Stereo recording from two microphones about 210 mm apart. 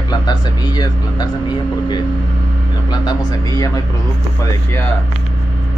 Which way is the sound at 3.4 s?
15° left (ahead or behind).